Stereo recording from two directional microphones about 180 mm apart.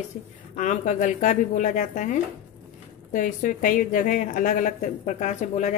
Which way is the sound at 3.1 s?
45° left (ahead or behind).